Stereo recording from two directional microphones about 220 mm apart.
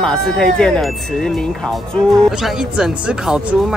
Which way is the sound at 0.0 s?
5° left (ahead or behind).